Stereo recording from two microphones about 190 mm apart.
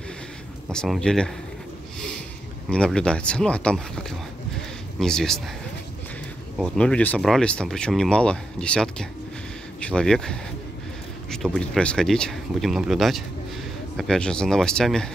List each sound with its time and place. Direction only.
0.7 s speech: 5° left (ahead or behind)
2.7 s speech: 5° left (ahead or behind)
5.0 s speech: 5° left (ahead or behind)
6.6 s speech: 5° left (ahead or behind)